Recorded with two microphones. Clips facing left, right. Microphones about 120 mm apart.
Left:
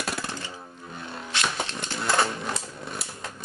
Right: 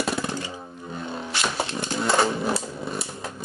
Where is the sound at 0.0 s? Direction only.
Centre (ahead or behind).